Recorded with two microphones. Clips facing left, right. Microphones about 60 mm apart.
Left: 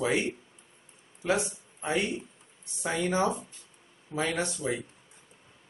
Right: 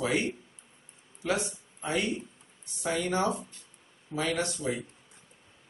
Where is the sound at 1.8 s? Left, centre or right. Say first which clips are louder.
Left 1 dB; left.